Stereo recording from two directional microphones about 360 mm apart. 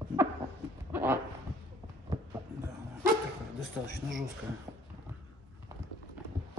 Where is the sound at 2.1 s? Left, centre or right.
Centre.